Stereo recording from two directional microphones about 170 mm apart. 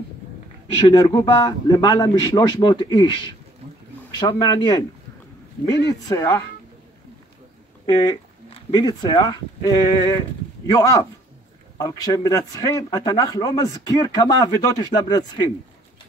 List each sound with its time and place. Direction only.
0.7 s a man's voice: 25° left (ahead or behind)
6.0 s a man's voice: 20° left (ahead or behind)
7.8 s a man's voice: 25° left (ahead or behind)